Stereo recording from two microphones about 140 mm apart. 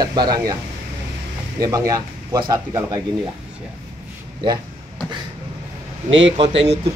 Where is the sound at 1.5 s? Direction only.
25° right (ahead or behind).